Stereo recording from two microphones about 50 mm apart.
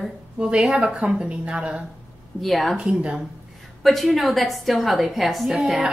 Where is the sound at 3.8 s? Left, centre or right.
Centre.